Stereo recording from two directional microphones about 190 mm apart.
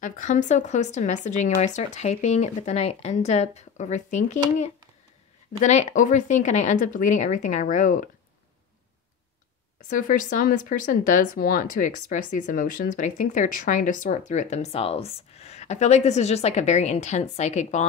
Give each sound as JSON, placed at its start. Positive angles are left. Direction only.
{"t": 0.0, "sound": "speech", "side_deg": 40}
{"t": 5.6, "sound": "speech", "side_deg": 40}
{"t": 9.8, "sound": "speech", "side_deg": 45}